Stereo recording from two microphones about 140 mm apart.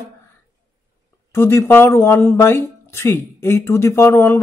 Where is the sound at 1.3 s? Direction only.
20° left (ahead or behind).